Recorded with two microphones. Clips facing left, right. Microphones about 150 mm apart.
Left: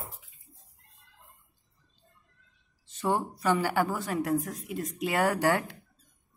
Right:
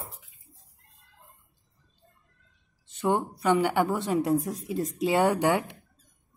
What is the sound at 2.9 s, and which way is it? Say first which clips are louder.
A woman's voice: right 3 dB; 20° right (ahead or behind).